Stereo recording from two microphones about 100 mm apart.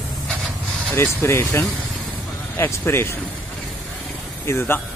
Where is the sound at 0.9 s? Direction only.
25° left (ahead or behind).